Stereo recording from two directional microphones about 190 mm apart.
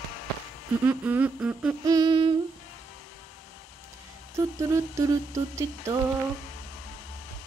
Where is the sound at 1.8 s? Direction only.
20° right (ahead or behind).